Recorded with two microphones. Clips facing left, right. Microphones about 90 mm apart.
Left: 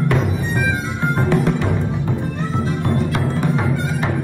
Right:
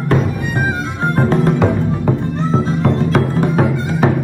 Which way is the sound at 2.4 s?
20° right (ahead or behind).